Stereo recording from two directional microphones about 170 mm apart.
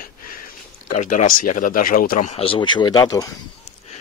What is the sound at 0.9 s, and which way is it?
Speech, 50° left (ahead or behind).